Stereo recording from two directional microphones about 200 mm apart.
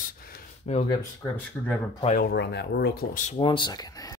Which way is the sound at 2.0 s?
50° left (ahead or behind).